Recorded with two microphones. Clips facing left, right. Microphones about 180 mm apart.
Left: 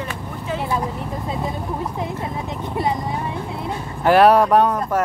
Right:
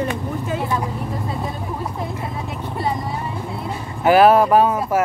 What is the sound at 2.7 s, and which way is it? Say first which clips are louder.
Vehicle: left 2 dB; 20° left (ahead or behind).